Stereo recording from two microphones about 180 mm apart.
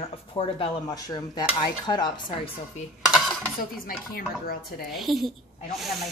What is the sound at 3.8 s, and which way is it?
Speech, 55° left (ahead or behind).